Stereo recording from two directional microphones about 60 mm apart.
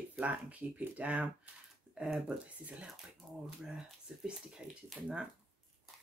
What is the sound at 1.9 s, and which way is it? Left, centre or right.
Speech, centre.